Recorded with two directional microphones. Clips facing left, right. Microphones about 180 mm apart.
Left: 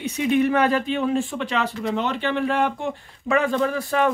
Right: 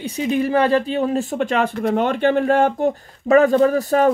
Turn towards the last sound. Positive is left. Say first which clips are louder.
# right 6 dB
turn(degrees=-40)  # may be behind; listen again after turning